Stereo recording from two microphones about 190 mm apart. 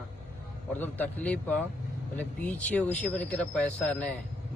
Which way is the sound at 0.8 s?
10° left (ahead or behind).